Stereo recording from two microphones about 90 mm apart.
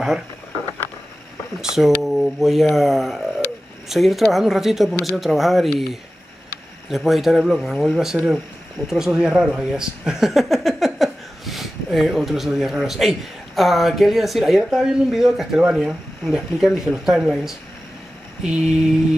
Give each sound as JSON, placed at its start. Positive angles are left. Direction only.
{"t": 1.6, "sound": "speech", "side_deg": -5}
{"t": 18.4, "sound": "mantra", "side_deg": -10}